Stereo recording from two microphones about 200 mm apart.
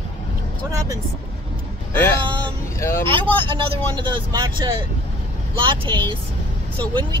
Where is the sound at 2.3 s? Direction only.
10° left (ahead or behind).